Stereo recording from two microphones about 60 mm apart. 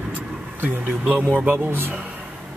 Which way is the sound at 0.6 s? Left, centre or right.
Right.